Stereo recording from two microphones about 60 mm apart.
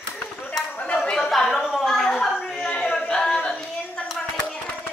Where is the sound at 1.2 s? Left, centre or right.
Centre.